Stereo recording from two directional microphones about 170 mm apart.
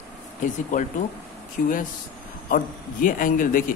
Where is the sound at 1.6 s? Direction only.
55° left (ahead or behind).